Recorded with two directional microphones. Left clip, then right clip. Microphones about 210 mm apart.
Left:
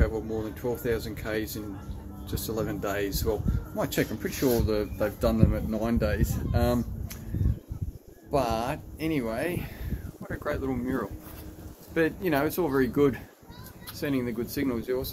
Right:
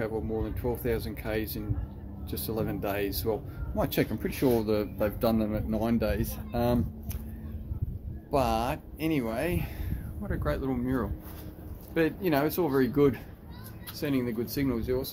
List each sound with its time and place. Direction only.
0.0 s speech: 10° right (ahead or behind)
8.3 s speech: 15° right (ahead or behind)